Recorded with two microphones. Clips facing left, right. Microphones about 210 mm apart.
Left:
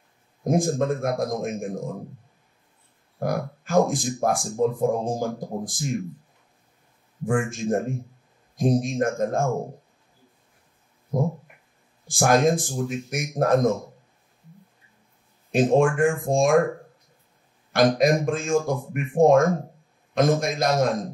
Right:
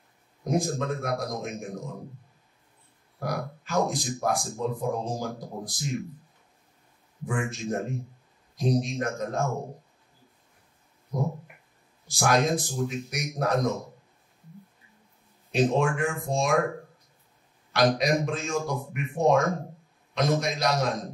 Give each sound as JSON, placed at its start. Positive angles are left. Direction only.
{"t": 0.4, "sound": "speech", "side_deg": 50}
{"t": 3.2, "sound": "speech", "side_deg": 50}
{"t": 7.2, "sound": "speech", "side_deg": 50}
{"t": 11.1, "sound": "a sound", "side_deg": 50}
{"t": 12.1, "sound": "speech", "side_deg": 50}
{"t": 15.5, "sound": "speech", "side_deg": 50}
{"t": 17.7, "sound": "speech", "side_deg": 50}